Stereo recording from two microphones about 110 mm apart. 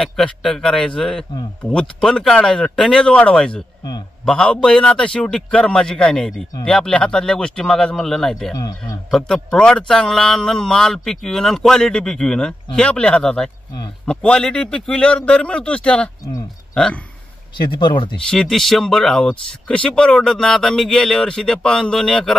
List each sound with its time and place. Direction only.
0.0 s speech: 5° left (ahead or behind)
8.5 s a man's voice: 35° left (ahead or behind)
9.1 s speech: 5° left (ahead or behind)
17.6 s speech: 45° left (ahead or behind)
18.3 s speech: 5° left (ahead or behind)